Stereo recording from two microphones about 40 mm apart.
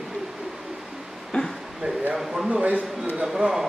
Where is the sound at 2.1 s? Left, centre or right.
Centre.